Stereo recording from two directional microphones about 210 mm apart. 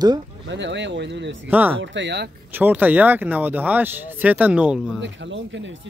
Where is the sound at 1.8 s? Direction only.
55° right (ahead or behind).